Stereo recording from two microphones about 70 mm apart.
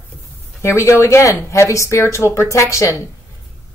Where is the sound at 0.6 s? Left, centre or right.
Left.